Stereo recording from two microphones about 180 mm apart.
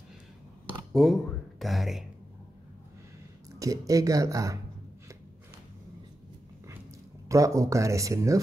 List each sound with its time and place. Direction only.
0.9 s speech: centre (ahead or behind)
3.5 s speech: 20° right (ahead or behind)
7.2 s speech: 15° right (ahead or behind)